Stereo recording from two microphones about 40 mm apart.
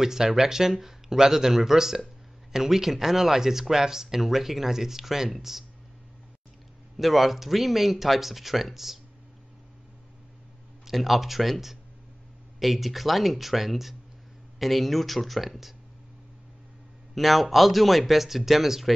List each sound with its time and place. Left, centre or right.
0.0 s speech: centre
7.0 s speech: centre
10.9 s speech: centre
17.1 s speech: centre